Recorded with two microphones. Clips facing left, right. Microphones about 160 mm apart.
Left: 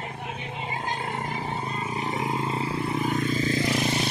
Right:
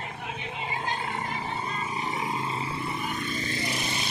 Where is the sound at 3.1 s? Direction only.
90° left.